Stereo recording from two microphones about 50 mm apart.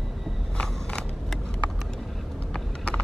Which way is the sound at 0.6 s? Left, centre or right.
Centre.